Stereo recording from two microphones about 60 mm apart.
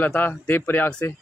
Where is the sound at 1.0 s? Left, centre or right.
Left.